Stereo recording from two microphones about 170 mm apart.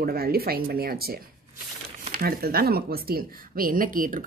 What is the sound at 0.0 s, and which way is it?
Speech, 65° right (ahead or behind).